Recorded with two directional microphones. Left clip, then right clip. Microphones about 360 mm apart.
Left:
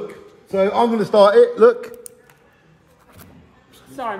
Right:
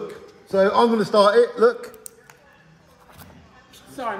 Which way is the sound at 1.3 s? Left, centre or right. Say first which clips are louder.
Left 5 dB; left.